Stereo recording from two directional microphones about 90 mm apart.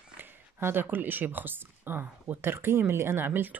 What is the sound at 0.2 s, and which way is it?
Speech, 25° right (ahead or behind).